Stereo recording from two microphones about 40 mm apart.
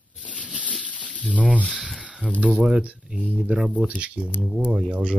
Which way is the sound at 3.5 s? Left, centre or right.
Right.